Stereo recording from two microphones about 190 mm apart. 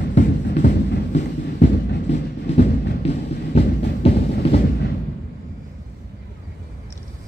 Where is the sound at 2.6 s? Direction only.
35° left (ahead or behind).